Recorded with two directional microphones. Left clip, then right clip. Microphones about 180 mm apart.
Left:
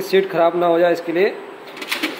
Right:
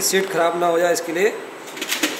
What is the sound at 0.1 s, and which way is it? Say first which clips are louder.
Speech: left 5 dB; 40° left (ahead or behind).